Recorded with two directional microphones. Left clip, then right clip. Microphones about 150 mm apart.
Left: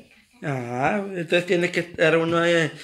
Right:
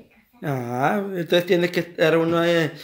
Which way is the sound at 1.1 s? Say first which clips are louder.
Right 3 dB; 35° right (ahead or behind).